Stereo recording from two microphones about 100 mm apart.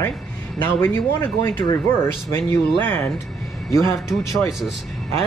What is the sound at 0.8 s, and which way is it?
A man's voice, 20° left (ahead or behind).